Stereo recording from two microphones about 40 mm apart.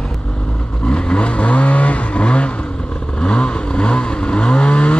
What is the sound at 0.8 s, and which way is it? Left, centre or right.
Vehicle, left.